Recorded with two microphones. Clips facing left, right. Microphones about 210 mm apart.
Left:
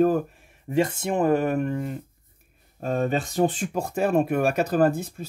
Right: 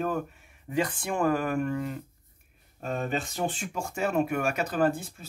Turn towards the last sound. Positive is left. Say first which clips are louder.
# left 5 dB
turn(degrees=35)  # may be behind; listen again after turning